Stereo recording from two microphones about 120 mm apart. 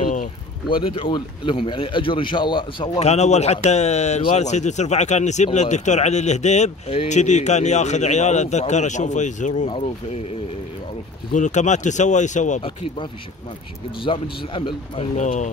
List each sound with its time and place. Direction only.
0.7 s speech: 45° left (ahead or behind)
3.0 s speech: 65° left (ahead or behind); by 9.7 s 90° left
9.7 s speech: 50° left (ahead or behind)
11.3 s speech: 85° left
12.6 s speech: 45° left (ahead or behind)
15.1 s speech: 90° left